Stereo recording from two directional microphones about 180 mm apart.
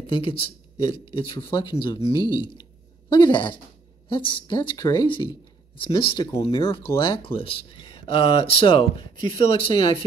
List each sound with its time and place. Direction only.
0.0 s speech: 30° left (ahead or behind)